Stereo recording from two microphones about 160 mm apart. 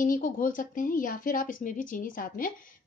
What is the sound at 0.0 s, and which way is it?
Speech, 60° left (ahead or behind).